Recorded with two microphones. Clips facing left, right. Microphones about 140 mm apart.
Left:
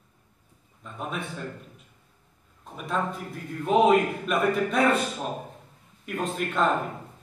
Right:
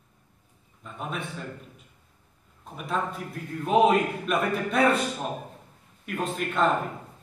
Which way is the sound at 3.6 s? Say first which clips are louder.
Left 1 dB; centre (ahead or behind).